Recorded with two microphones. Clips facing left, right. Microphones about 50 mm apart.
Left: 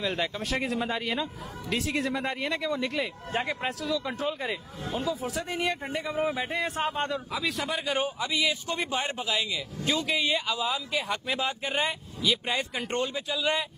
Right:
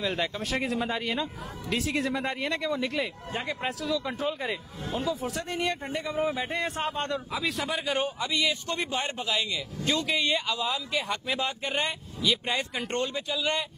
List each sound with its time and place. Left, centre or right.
0.0 s speech: centre